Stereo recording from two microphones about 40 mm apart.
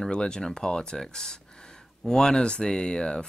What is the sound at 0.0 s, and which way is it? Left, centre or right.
Speech, centre.